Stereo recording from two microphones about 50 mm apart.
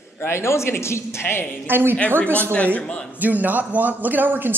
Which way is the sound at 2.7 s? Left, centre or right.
Centre.